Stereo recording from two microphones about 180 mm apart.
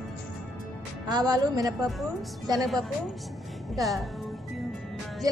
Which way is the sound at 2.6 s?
Centre (ahead or behind).